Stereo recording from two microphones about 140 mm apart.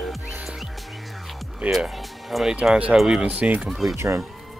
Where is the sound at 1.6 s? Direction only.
5° right (ahead or behind).